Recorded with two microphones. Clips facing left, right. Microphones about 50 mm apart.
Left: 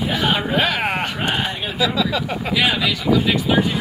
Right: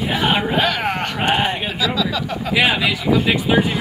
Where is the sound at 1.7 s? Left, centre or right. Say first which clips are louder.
Left 1 dB; centre.